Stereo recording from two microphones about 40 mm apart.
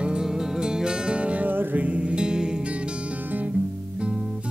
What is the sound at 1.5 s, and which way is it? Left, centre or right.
Music, right.